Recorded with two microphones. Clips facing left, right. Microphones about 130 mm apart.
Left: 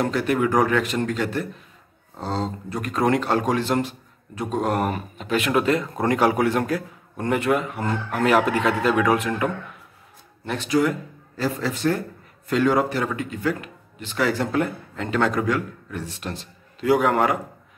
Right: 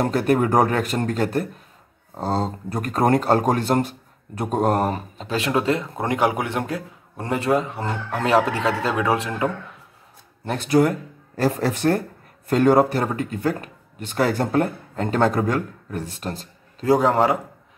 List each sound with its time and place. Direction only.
0.0 s speech: 40° right (ahead or behind); by 9.5 s 25° right (ahead or behind)
10.4 s speech: 40° right (ahead or behind)
16.8 s speech: 30° right (ahead or behind)